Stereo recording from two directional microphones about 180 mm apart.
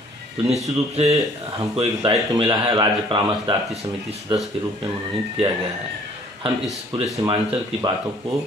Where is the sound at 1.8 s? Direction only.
30° right (ahead or behind).